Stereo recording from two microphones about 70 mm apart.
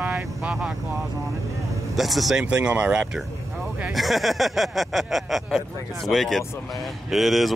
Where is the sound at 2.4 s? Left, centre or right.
Centre.